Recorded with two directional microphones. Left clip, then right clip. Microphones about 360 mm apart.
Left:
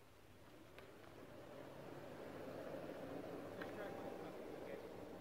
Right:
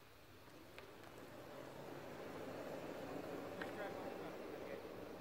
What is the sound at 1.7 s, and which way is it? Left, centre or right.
Vehicle, right.